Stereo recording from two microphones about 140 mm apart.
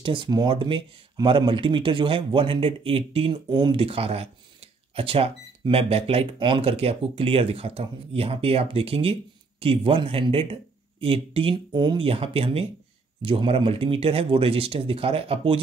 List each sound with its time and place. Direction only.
0.0 s speech: 35° right (ahead or behind)